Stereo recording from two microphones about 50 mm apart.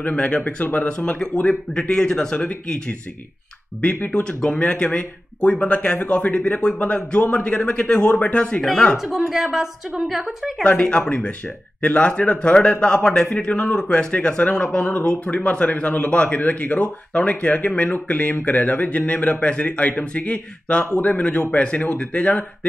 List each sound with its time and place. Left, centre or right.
0.0 s a man's voice: left
3.8 s speech: left
4.1 s speech: centre
8.9 s a woman's voice: centre
10.6 s a man's voice: left